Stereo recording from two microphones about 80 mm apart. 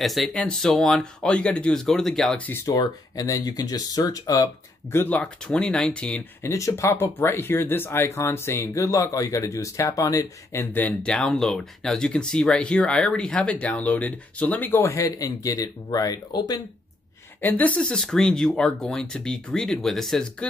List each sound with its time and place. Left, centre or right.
0.0 s speech: centre
2.8 s speech: left
5.1 s speech: centre
6.4 s speech: left
10.5 s speech: left
11.1 s speech: centre; by 14.9 s left
14.9 s speech: left
17.4 s speech: left